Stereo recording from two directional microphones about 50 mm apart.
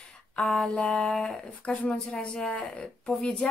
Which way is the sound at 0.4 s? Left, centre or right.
Centre.